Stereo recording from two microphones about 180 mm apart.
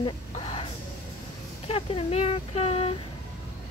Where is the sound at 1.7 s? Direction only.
30° left (ahead or behind).